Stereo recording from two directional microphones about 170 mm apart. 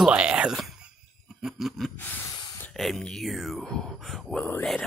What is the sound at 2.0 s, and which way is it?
Speech, 10° left (ahead or behind).